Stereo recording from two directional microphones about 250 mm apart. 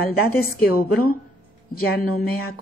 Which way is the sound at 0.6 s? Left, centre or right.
Left.